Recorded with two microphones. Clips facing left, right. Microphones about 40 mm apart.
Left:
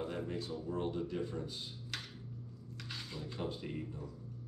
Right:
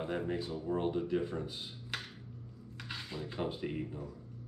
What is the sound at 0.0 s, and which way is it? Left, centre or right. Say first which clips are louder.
Speech: right 4 dB; right.